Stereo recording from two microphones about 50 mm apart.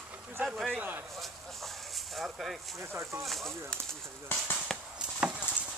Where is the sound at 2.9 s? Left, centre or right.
Right.